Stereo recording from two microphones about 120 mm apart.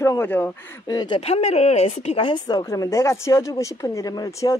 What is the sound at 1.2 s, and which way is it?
Speech, 65° left (ahead or behind).